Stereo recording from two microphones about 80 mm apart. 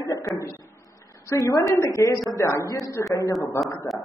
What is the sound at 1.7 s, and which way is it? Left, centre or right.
A woman's voice, left.